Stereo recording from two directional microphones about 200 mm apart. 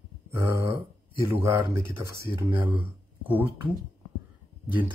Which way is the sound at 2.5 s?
25° right (ahead or behind).